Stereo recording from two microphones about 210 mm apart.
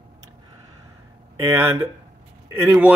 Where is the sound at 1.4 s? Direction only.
10° right (ahead or behind).